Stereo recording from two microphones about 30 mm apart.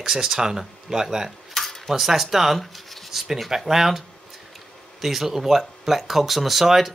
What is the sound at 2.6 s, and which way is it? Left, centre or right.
Writing, centre.